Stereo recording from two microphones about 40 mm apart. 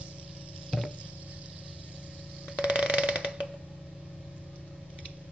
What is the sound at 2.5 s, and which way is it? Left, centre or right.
Mechanisms, right.